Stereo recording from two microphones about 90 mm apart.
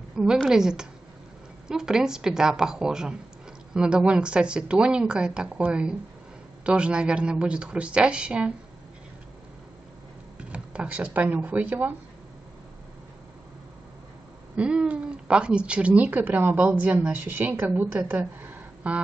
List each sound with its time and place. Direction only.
0.1 s a woman's voice: 10° right (ahead or behind)
10.5 s speech: 15° right (ahead or behind)
14.5 s speech: 15° right (ahead or behind)